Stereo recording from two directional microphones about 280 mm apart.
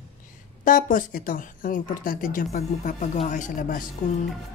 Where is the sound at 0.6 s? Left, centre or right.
Left.